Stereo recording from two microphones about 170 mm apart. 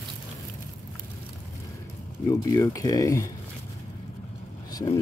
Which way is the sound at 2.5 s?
20° left (ahead or behind).